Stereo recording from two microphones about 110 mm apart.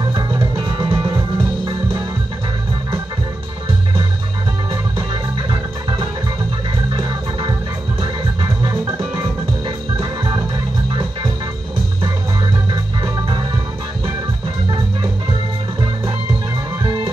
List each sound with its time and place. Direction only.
0.1 s music: 50° right (ahead or behind)
5.5 s music: 45° right (ahead or behind)
8.8 s music: 20° right (ahead or behind)
9.9 s music: 50° right (ahead or behind)
16.8 s music: 50° right (ahead or behind)